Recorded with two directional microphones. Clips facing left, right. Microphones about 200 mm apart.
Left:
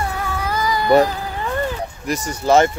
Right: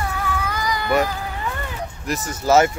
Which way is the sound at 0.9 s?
35° left (ahead or behind).